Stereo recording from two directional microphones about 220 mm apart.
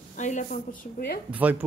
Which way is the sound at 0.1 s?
35° left (ahead or behind).